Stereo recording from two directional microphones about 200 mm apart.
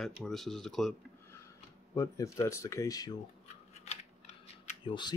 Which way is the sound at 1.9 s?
15° left (ahead or behind).